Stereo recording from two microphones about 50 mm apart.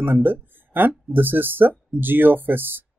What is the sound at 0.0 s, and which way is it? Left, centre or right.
Speech, right.